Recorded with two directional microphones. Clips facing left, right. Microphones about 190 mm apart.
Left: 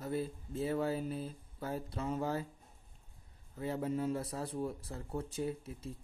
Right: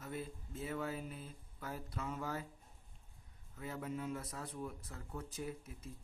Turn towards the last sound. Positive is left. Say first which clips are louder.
# left 7 dB
turn(degrees=30)  # may be behind; listen again after turning